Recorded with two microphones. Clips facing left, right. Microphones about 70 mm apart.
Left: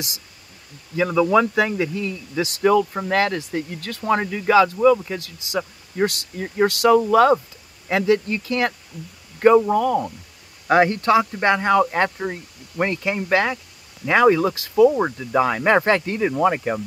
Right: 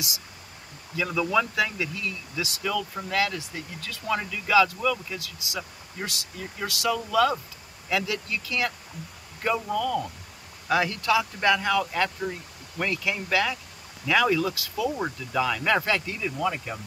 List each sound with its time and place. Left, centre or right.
0.9 s speech: left